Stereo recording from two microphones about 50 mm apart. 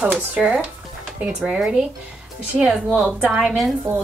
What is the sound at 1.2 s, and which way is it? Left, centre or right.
Speech, right.